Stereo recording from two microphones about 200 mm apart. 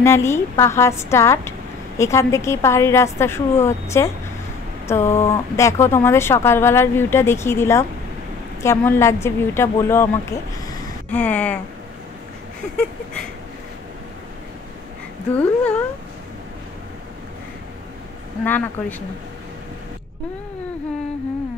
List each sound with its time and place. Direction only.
0.0 s speech: 15° left (ahead or behind)
15.3 s speech: 5° left (ahead or behind)
18.4 s speech: 10° left (ahead or behind)